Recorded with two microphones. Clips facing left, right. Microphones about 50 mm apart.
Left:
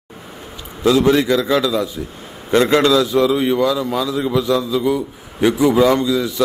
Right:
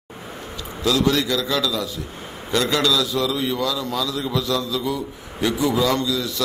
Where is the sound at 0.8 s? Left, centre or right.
Left.